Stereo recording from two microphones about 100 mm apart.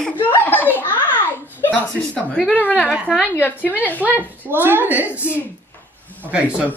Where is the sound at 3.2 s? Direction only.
20° left (ahead or behind).